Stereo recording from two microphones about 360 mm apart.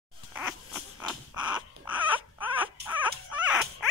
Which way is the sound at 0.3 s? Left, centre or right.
Centre.